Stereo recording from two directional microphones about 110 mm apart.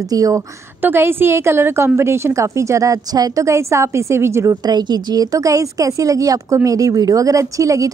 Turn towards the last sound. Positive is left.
turn(degrees=-30)  # may be behind; listen again after turning